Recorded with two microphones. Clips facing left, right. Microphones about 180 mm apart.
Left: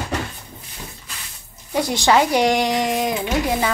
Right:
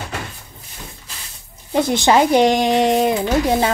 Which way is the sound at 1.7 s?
20° right (ahead or behind).